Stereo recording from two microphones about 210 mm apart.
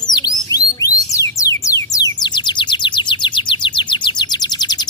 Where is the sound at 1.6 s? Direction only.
15° left (ahead or behind).